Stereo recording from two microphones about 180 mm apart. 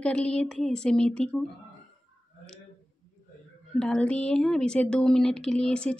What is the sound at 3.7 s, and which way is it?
Speech, 5° left (ahead or behind).